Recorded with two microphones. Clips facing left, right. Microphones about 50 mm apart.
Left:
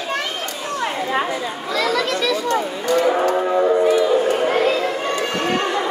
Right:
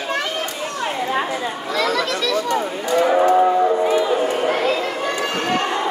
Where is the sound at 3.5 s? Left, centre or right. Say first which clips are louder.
Right 1 dB; centre.